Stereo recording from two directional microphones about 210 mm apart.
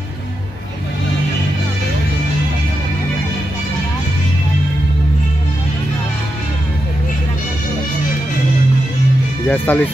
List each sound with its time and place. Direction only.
9.5 s speech: 10° left (ahead or behind)